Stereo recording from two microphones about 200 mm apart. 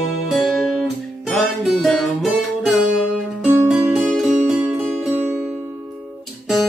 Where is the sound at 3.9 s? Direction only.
Centre (ahead or behind).